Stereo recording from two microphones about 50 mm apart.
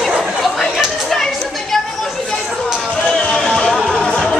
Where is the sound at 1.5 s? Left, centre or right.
Centre.